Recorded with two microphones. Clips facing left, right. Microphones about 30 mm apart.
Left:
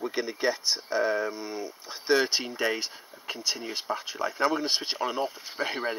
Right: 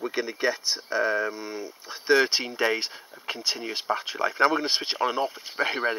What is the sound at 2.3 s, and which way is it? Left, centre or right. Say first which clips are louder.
Speech: right 3 dB; right.